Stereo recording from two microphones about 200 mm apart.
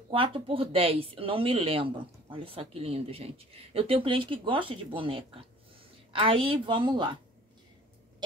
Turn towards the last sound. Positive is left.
turn(degrees=-25)  # may be behind; listen again after turning